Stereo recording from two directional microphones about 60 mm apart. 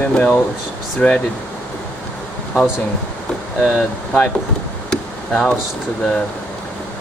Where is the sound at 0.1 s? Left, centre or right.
Centre.